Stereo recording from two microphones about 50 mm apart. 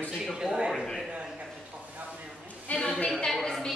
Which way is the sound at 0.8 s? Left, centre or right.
Centre.